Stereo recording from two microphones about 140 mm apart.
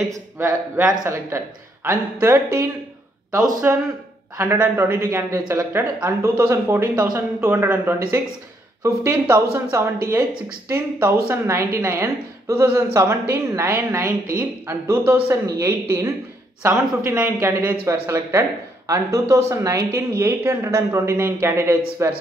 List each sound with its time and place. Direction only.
0.1 s a woman's voice: 20° right (ahead or behind)